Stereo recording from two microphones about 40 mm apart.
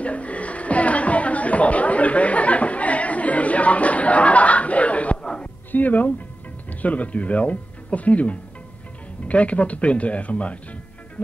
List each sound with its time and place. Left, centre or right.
0.0 s chatter: left
5.7 s speech: left